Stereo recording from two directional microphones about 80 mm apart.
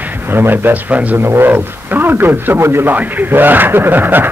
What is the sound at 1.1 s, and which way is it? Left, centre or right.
A man's voice, right.